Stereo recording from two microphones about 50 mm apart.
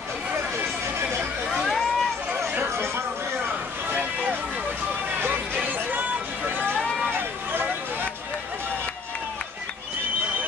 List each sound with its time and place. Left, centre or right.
1.6 s vehicle: centre
5.5 s chatter: right
7.1 s run: right